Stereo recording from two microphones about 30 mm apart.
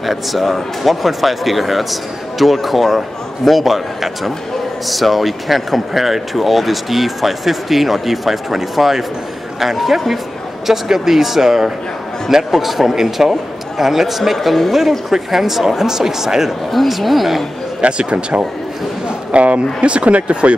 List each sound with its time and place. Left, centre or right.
0.0 s speech: centre
16.7 s speech: centre
17.8 s speech: right